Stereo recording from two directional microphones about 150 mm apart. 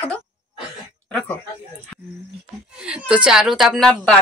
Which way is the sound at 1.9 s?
Centre (ahead or behind).